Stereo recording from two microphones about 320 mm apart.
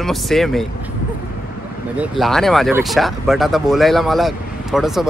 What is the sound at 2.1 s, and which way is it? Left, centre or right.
Speech, centre.